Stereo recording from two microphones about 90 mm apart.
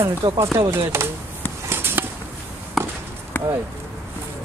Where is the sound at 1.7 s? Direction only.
25° right (ahead or behind).